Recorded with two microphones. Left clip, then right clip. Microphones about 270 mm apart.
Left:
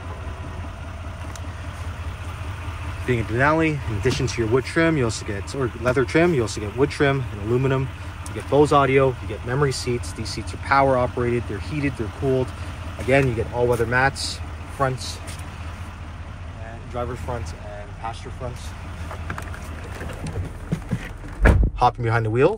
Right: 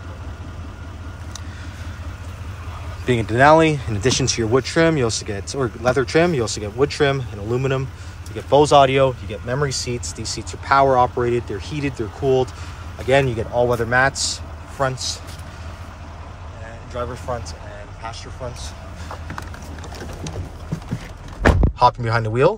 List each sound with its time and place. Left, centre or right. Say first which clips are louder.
3.1 s speech: right 7 dB; centre
16.9 s speech: right 3 dB; centre
21.7 s speech: right 3 dB; centre